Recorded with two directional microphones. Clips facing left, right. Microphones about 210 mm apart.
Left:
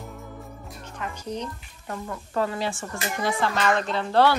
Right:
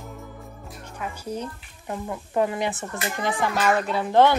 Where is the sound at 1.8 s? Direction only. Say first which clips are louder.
Right 2 dB; 15° right (ahead or behind).